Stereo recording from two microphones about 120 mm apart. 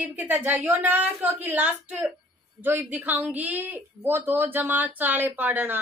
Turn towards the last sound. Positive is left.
turn(degrees=-15)  # may be behind; listen again after turning